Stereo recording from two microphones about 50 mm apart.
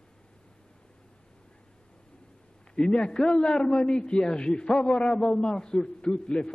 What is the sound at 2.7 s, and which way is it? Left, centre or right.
A man's voice, centre.